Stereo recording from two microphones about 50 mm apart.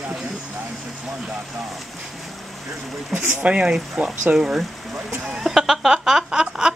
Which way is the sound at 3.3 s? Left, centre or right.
Right.